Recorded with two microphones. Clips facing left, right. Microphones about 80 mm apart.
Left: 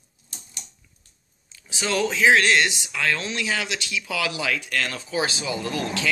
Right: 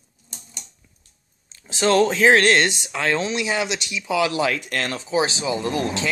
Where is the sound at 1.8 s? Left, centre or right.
Right.